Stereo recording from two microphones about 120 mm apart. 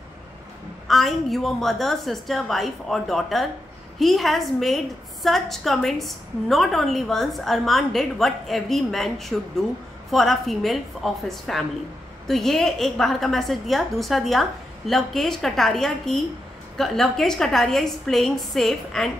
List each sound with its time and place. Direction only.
0.8 s a woman's voice: centre (ahead or behind)